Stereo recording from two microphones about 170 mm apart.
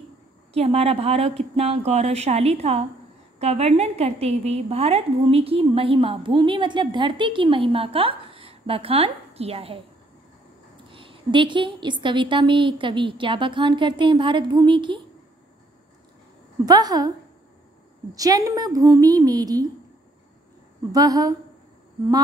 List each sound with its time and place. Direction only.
0.5 s a woman's voice: 35° right (ahead or behind)
10.9 s a woman's voice: 30° right (ahead or behind)
16.6 s a woman's voice: 20° right (ahead or behind)
18.1 s a woman's voice: 20° right (ahead or behind)
20.9 s a woman's voice: 20° right (ahead or behind)